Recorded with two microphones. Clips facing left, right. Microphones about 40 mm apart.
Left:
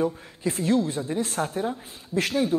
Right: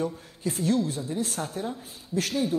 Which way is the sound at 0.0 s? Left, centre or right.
Left.